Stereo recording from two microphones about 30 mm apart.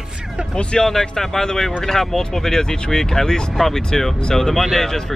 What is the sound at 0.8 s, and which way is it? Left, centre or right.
Speech, centre.